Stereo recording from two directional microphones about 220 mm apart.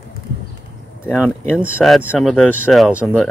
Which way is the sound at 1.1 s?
Centre (ahead or behind).